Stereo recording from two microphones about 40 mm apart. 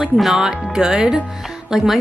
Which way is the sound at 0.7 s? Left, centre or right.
Centre.